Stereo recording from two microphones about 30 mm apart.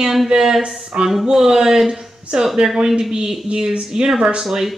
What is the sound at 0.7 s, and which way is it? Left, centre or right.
Speech, right.